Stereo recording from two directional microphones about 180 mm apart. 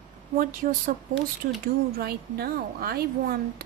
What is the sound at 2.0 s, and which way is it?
Speech, 60° right (ahead or behind).